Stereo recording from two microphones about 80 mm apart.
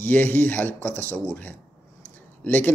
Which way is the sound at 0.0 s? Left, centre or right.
Left.